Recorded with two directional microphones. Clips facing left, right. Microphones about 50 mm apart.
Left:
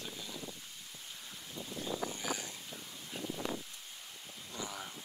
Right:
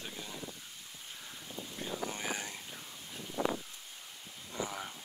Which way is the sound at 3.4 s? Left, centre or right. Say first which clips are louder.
Right 6 dB; centre.